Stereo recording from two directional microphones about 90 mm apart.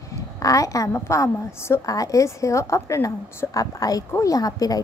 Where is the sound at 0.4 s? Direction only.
40° left (ahead or behind).